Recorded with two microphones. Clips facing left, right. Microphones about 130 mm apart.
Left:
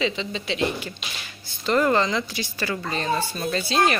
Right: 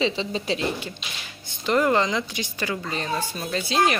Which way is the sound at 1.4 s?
15° right (ahead or behind).